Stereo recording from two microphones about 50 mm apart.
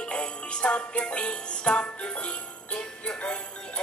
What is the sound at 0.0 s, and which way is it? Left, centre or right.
Music, left.